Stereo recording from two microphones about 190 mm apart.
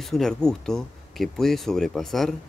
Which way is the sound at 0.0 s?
Centre (ahead or behind).